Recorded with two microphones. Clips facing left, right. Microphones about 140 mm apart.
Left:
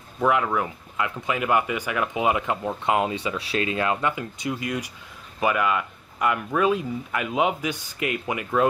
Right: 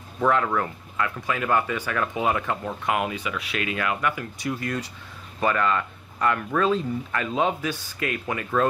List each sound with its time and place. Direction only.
0.2 s speech: 5° left (ahead or behind)